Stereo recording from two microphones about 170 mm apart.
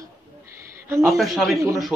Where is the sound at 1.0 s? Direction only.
Centre (ahead or behind).